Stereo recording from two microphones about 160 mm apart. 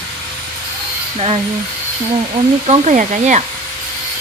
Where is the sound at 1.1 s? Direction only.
40° right (ahead or behind).